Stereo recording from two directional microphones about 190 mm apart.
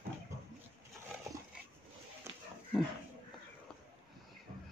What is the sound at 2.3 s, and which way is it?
Dog, 15° right (ahead or behind).